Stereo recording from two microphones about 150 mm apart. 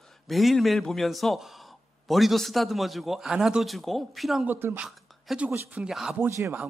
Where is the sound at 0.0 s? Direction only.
Centre (ahead or behind).